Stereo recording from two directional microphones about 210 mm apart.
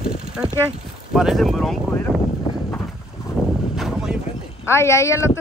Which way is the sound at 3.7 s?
Centre (ahead or behind).